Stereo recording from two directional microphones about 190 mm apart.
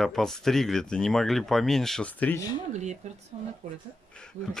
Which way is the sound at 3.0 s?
35° right (ahead or behind).